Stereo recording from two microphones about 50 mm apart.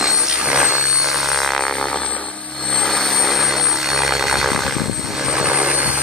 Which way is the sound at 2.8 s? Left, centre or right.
Centre.